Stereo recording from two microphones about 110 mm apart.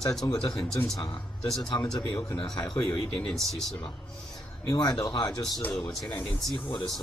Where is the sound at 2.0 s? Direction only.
35° left (ahead or behind).